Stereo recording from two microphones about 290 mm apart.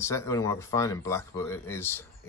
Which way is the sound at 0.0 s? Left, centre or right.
Centre.